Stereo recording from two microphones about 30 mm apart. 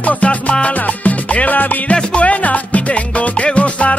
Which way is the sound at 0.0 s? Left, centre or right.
Left.